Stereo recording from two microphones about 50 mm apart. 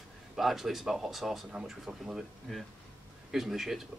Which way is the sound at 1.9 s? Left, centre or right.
Right.